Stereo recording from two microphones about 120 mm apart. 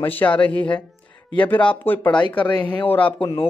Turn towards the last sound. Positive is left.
turn(degrees=15)  # may be behind; listen again after turning